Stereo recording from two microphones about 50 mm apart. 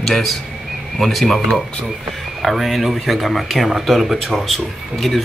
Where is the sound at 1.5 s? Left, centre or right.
Centre.